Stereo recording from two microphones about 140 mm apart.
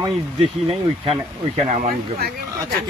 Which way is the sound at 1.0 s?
55° right (ahead or behind).